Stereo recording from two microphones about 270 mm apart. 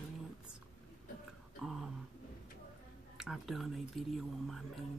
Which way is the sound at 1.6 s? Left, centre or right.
Centre.